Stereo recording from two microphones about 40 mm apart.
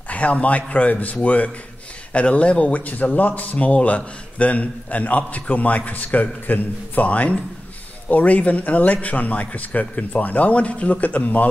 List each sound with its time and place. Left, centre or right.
0.1 s a man's voice: left